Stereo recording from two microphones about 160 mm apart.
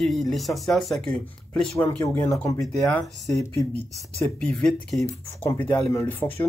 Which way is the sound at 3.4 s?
20° left (ahead or behind).